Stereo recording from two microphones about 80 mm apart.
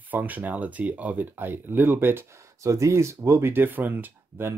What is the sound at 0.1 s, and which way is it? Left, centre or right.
Speech, right.